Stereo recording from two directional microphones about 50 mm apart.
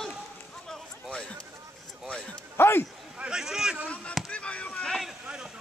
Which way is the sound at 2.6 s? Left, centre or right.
Left.